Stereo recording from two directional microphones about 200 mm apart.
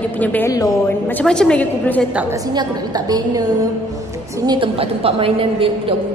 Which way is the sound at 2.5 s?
20° right (ahead or behind).